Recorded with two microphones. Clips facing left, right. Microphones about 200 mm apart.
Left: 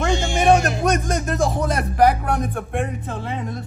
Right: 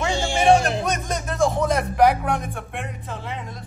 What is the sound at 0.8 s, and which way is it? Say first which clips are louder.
Music: left 5 dB; 50° left (ahead or behind).